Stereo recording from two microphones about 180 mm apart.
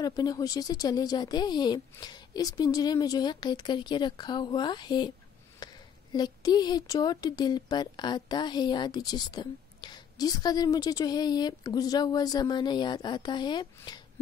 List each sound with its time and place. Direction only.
0.0 s speech: 20° left (ahead or behind)
5.6 s a sound: 20° left (ahead or behind)
6.1 s speech: 25° left (ahead or behind)